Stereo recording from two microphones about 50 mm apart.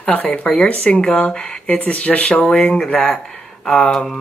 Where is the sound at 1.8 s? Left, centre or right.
Left.